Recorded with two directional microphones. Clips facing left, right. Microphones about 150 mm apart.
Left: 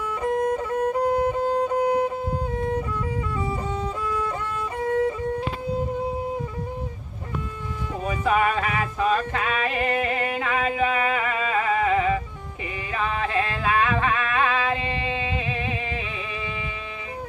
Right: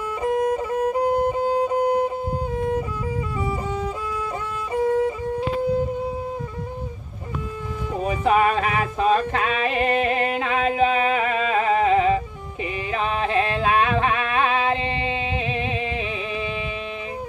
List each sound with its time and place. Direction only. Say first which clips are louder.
0.2 s music: right 2 dB; 5° right (ahead or behind)
8.0 s music: right 3 dB; 25° right (ahead or behind)
11.5 s a sound: right 3 dB; 25° right (ahead or behind)
12.9 s yodeling: right 3 dB; 20° right (ahead or behind)